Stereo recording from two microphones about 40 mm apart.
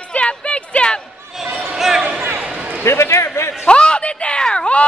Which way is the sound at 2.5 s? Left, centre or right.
Right.